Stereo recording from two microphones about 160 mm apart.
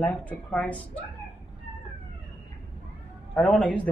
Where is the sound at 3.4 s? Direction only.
Centre (ahead or behind).